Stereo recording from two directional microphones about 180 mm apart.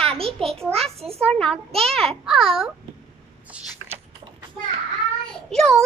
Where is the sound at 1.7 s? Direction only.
35° right (ahead or behind).